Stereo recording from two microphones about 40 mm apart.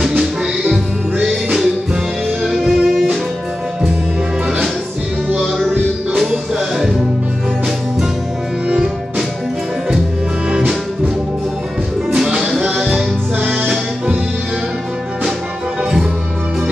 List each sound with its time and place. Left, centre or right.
1.2 s music: centre
2.4 s music: centre
12.8 s music: right